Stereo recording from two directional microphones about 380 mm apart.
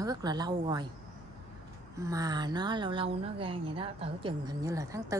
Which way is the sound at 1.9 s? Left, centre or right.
Centre.